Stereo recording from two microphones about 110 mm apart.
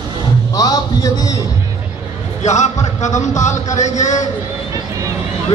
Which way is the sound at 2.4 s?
90° left.